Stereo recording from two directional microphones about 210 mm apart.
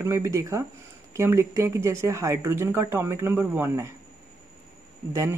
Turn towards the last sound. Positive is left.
turn(degrees=-15)  # may be behind; listen again after turning